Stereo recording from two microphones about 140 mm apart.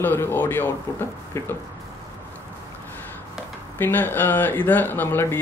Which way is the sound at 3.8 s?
15° left (ahead or behind).